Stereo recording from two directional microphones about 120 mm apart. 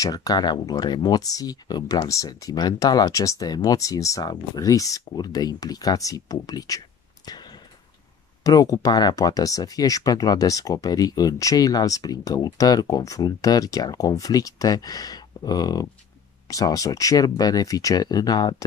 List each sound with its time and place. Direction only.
0.0 s speech: 30° left (ahead or behind)
7.2 s a sound: 35° left (ahead or behind)
8.5 s speech: 30° left (ahead or behind)